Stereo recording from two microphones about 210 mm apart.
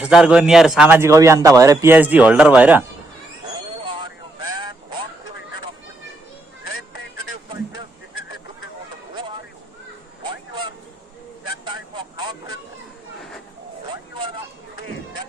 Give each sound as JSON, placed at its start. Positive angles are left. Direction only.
{"t": 0.0, "sound": "a man's voice", "side_deg": -5}
{"t": 3.8, "sound": "a sound", "side_deg": -25}
{"t": 10.2, "sound": "vehicle", "side_deg": -20}